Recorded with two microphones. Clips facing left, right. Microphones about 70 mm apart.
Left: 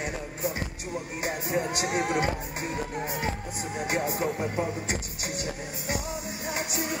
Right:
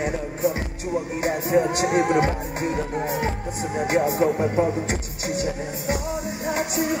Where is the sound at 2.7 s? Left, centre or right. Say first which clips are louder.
Right 6 dB; centre.